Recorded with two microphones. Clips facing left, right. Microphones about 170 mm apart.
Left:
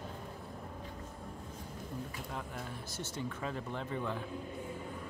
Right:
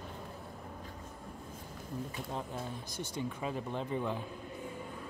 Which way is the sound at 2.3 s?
25° right (ahead or behind).